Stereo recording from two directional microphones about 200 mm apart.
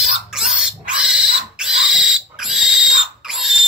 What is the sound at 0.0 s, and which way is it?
Pig, centre (ahead or behind).